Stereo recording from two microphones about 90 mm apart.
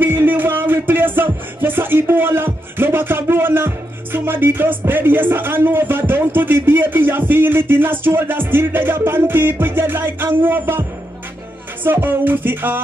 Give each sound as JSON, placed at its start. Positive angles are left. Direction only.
{"t": 0.0, "sound": "music", "side_deg": -20}
{"t": 10.6, "sound": "speech", "side_deg": -30}
{"t": 11.8, "sound": "music", "side_deg": -25}